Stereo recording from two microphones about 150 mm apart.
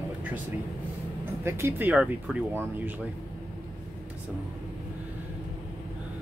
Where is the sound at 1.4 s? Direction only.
15° right (ahead or behind).